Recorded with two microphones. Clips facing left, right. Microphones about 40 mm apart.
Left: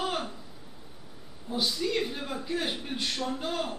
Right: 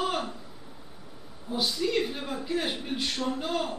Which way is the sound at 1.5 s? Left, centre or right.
Centre.